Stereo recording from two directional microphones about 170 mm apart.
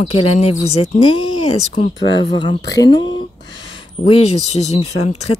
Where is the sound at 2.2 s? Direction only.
30° left (ahead or behind).